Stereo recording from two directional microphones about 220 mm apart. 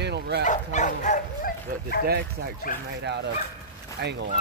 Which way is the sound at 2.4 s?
45° right (ahead or behind).